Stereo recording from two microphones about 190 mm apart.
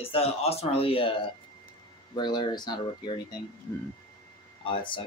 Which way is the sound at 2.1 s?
20° left (ahead or behind).